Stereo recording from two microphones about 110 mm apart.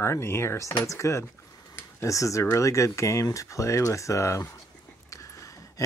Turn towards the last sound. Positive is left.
turn(degrees=30)  # may be behind; listen again after turning